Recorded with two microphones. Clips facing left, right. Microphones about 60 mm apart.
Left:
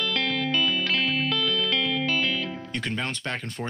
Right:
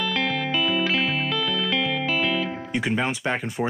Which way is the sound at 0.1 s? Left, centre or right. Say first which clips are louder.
Right 2 dB; centre.